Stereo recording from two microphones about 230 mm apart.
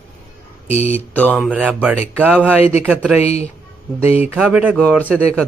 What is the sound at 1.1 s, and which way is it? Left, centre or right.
Mantra, centre.